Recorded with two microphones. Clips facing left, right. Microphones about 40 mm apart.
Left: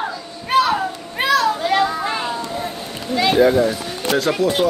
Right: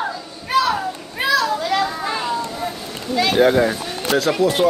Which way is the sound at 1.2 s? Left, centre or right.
Left.